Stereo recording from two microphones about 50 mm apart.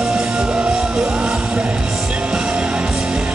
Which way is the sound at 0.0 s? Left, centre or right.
Centre.